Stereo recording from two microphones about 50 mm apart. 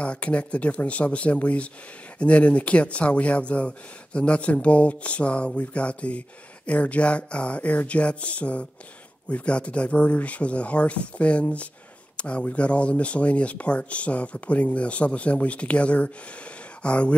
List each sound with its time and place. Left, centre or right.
0.0 s speech: left